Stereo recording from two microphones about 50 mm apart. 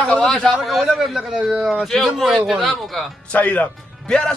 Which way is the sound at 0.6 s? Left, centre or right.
Centre.